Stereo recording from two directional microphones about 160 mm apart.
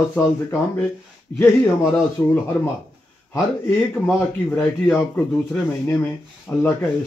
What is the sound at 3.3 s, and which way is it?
Speech, 10° left (ahead or behind).